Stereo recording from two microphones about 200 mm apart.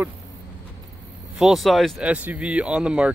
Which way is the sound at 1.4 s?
Centre (ahead or behind).